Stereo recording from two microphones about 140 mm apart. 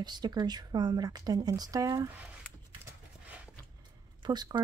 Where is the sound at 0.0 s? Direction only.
30° right (ahead or behind).